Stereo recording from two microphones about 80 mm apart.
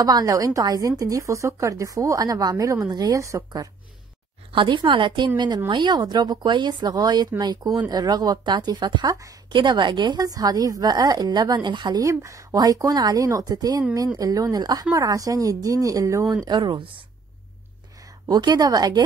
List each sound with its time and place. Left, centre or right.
0.0 s a woman's voice: right
3.2 s a woman's voice: right
4.5 s a woman's voice: right
12.0 s a woman's voice: right
16.4 s speech: right
18.3 s a woman's voice: right